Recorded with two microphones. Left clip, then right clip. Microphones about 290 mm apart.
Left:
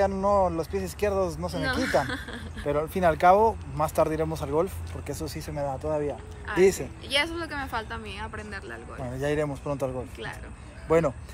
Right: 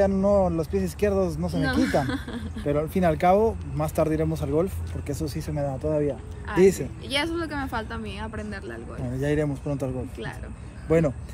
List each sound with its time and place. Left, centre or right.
0.0 s speech: centre
1.7 s speech: centre
2.6 s speech: centre
6.5 s speech: centre
9.1 s speech: centre